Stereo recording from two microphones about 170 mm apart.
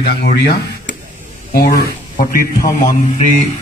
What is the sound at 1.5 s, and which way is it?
Speech, 65° left (ahead or behind).